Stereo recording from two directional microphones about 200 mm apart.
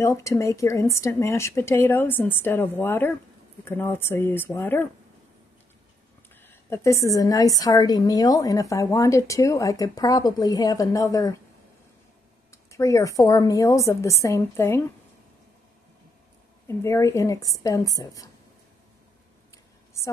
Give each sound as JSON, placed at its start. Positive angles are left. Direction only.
{"t": 0.0, "sound": "a woman's voice", "side_deg": 15}
{"t": 6.4, "sound": "a woman's voice", "side_deg": 10}
{"t": 12.7, "sound": "a woman's voice", "side_deg": 15}
{"t": 16.6, "sound": "a woman's voice", "side_deg": 15}
{"t": 19.5, "sound": "a sound", "side_deg": 15}